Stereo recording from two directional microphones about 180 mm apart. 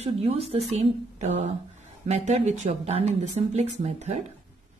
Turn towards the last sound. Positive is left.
turn(degrees=-35)  # may be behind; listen again after turning